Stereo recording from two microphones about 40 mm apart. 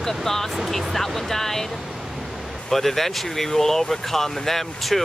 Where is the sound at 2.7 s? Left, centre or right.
Centre.